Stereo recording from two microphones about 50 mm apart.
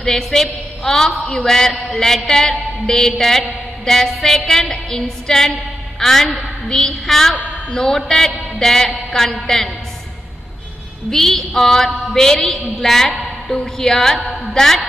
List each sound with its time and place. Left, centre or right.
0.0 s a man's voice: centre
11.1 s a man's voice: centre